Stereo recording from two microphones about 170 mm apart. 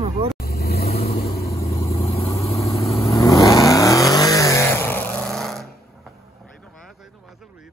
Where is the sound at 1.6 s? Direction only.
35° left (ahead or behind).